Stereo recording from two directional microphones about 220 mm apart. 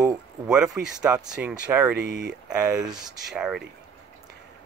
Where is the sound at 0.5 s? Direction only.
5° right (ahead or behind).